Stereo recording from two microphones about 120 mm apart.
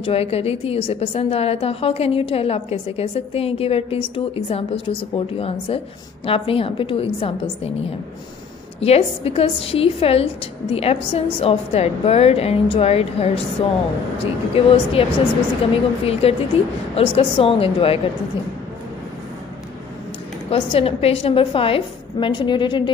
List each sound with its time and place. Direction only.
0.0 s a woman's voice: 55° left (ahead or behind)
8.7 s a woman's voice: 60° left (ahead or behind)
20.4 s a woman's voice: 50° left (ahead or behind)